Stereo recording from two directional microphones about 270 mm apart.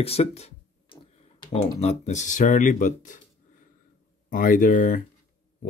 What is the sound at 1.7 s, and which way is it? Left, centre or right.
Speech, left.